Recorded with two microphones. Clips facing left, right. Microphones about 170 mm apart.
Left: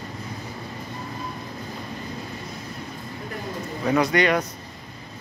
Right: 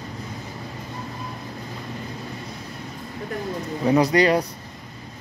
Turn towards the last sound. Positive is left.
turn(degrees=-30)  # may be behind; listen again after turning